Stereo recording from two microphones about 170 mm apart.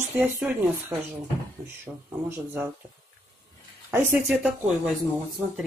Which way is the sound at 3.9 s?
10° right (ahead or behind).